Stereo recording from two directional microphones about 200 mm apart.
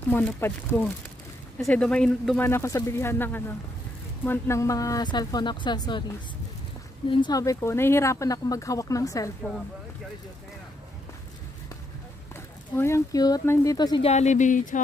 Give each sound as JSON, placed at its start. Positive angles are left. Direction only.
{"t": 0.1, "sound": "speech", "side_deg": 10}
{"t": 7.1, "sound": "speech", "side_deg": 20}
{"t": 12.7, "sound": "speech", "side_deg": 15}
{"t": 14.1, "sound": "speech", "side_deg": 35}